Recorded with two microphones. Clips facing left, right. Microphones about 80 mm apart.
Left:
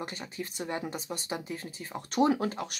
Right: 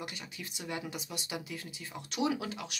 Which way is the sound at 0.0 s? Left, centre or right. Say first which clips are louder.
Left 6 dB; left.